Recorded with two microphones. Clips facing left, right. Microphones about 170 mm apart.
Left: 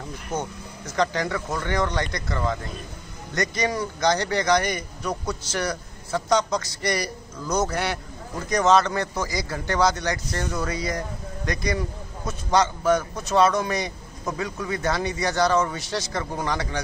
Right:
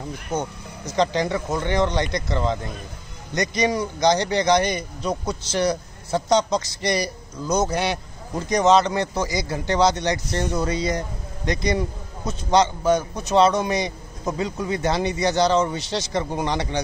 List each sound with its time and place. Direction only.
0.3 s speech: 15° right (ahead or behind)